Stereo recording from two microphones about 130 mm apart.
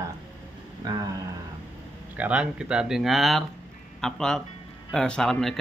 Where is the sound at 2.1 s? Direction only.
10° right (ahead or behind).